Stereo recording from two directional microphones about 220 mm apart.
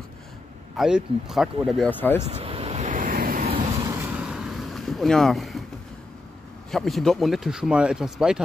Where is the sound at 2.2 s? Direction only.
25° right (ahead or behind).